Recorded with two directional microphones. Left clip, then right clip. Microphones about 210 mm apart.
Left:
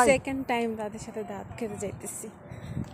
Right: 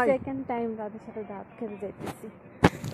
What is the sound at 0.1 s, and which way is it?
Speech, 30° left (ahead or behind).